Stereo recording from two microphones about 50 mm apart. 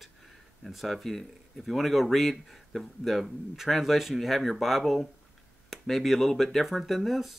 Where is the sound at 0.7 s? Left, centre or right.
Centre.